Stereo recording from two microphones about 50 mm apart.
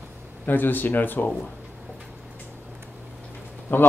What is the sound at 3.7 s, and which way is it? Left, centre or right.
Speech, left.